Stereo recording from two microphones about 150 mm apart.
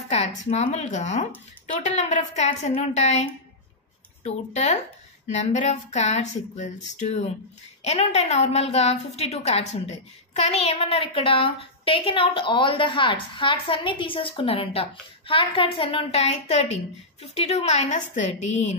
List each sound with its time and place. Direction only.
0.4 s a woman's voice: 45° left (ahead or behind)